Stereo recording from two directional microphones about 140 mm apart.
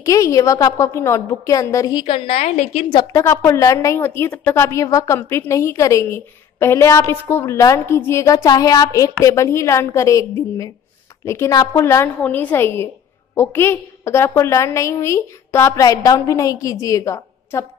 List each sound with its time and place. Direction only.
0.0 s a woman's voice: 20° left (ahead or behind)
2.0 s a woman's voice: 45° left (ahead or behind)
2.9 s a woman's voice: 30° left (ahead or behind)